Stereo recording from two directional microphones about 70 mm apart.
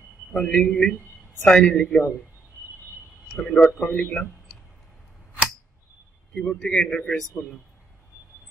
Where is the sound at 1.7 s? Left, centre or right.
Centre.